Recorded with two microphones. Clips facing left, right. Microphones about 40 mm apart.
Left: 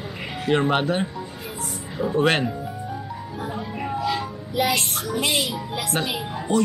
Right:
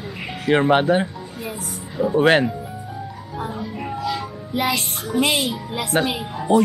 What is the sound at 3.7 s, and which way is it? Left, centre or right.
Music, centre.